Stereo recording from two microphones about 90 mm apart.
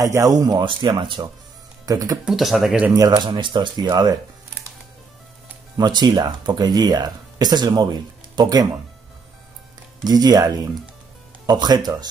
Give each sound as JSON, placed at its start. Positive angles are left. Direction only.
{"t": 0.0, "sound": "speech", "side_deg": -40}
{"t": 0.7, "sound": "speech", "side_deg": -70}
{"t": 1.9, "sound": "speech", "side_deg": -40}
{"t": 2.2, "sound": "speech", "side_deg": 0}
{"t": 3.0, "sound": "speech", "side_deg": -55}
{"t": 5.8, "sound": "speech", "side_deg": -55}
{"t": 10.0, "sound": "speech", "side_deg": -45}